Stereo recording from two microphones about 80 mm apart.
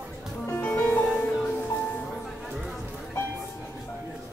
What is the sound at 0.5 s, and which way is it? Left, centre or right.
Music, left.